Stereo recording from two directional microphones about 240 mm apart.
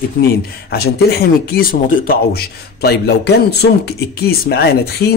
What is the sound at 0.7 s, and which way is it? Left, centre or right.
A man's voice, left.